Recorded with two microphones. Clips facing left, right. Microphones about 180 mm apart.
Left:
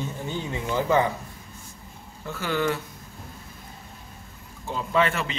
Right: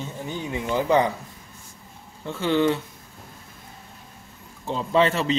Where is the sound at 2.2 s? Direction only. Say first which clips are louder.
Right 5 dB; 25° right (ahead or behind).